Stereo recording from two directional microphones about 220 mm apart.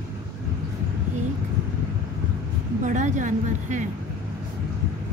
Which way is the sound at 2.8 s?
35° right (ahead or behind).